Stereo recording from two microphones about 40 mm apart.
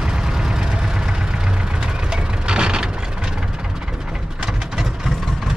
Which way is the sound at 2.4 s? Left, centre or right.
Right.